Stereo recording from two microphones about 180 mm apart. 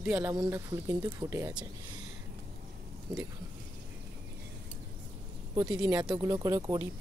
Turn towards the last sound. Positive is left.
turn(degrees=-20)  # may be behind; listen again after turning